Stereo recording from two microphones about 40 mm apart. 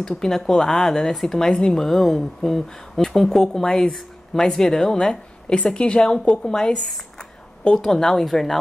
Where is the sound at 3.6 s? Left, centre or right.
Centre.